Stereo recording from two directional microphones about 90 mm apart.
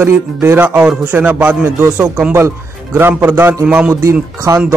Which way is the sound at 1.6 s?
30° right (ahead or behind).